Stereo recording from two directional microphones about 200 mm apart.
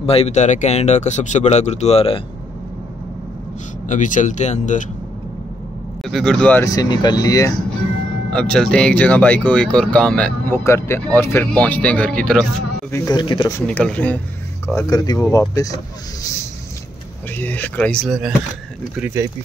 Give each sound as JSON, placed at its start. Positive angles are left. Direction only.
{"t": 0.0, "sound": "speech", "side_deg": 30}
{"t": 3.9, "sound": "speech", "side_deg": 40}
{"t": 6.0, "sound": "speech", "side_deg": 0}
{"t": 8.3, "sound": "speech", "side_deg": 5}
{"t": 12.9, "sound": "speech", "side_deg": 20}
{"t": 14.8, "sound": "speech", "side_deg": 20}
{"t": 17.4, "sound": "speech", "side_deg": 10}